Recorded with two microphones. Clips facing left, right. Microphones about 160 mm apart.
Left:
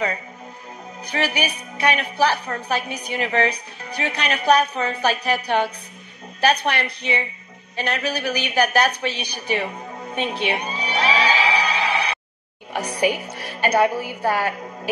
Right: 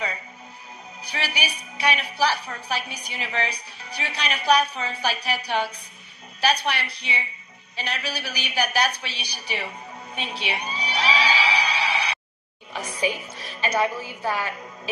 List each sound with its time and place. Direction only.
1.0 s a woman's voice: 55° left (ahead or behind)
7.7 s a sound: 55° left (ahead or behind)
12.7 s music: 65° left (ahead or behind)
13.7 s a woman's voice: 45° left (ahead or behind)